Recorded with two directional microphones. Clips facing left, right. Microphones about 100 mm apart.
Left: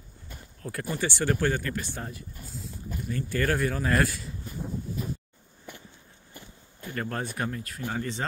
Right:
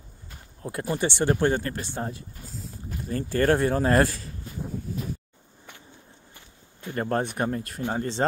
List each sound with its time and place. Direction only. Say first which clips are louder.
0.6 s speech: right 4 dB; 25° right (ahead or behind); by 4.4 s 40° right (ahead or behind)
6.9 s speech: right 6 dB; 30° right (ahead or behind)